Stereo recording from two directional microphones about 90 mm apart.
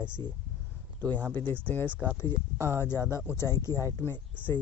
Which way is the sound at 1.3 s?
20° left (ahead or behind).